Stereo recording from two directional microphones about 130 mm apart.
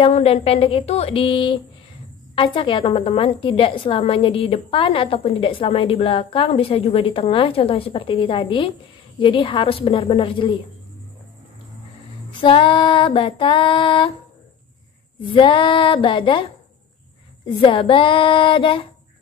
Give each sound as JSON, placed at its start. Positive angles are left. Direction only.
{"t": 0.1, "sound": "a woman's voice", "side_deg": 50}
{"t": 9.2, "sound": "female singing", "side_deg": 40}
{"t": 12.3, "sound": "female singing", "side_deg": 40}
{"t": 15.2, "sound": "female singing", "side_deg": 40}
{"t": 17.6, "sound": "female singing", "side_deg": 40}